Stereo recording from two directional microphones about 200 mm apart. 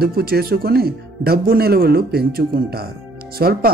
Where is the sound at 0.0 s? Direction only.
50° right (ahead or behind).